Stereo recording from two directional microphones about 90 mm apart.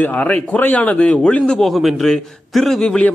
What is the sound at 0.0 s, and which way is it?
A man's voice, 15° left (ahead or behind).